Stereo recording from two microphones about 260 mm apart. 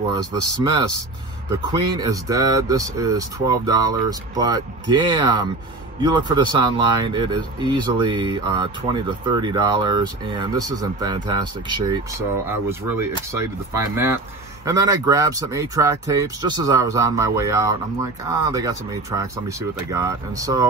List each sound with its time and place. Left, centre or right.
0.1 s speech: centre